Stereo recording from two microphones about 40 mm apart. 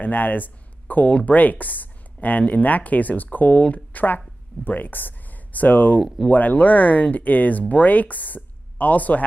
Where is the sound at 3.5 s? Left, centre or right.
Left.